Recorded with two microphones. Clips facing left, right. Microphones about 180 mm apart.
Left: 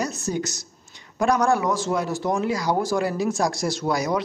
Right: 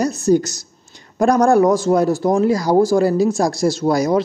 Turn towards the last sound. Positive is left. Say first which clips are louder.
# right 7 dB
turn(degrees=-35)  # may be behind; listen again after turning